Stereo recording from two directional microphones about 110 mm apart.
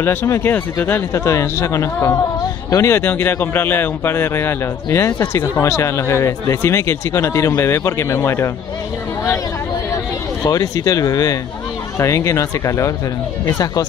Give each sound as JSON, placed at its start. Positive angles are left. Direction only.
{"t": 0.0, "sound": "speech", "side_deg": 20}
{"t": 10.4, "sound": "speech", "side_deg": 35}